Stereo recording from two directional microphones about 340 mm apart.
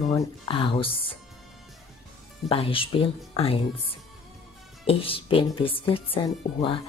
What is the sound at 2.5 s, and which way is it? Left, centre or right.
Speech, centre.